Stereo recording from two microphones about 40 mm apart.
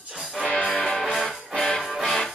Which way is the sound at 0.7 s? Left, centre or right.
Centre.